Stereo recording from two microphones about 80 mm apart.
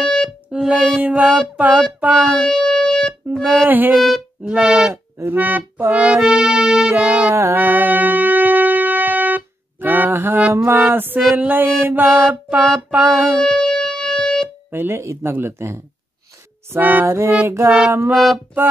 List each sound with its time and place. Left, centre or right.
0.0 s music: centre
0.5 s music: centre
2.4 s music: centre
3.6 s music: right
3.9 s speech: centre
4.5 s music: centre
5.2 s music: right
7.2 s music: right
13.4 s music: centre
14.7 s speech: right
17.6 s music: centre
18.1 s speech: centre